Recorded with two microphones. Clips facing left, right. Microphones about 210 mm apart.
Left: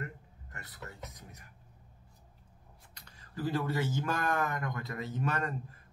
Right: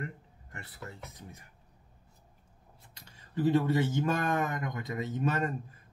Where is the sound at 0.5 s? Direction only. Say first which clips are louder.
Right 3 dB; 25° right (ahead or behind).